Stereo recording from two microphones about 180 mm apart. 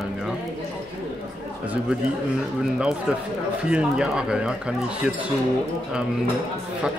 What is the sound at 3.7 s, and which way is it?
Speech, 5° right (ahead or behind).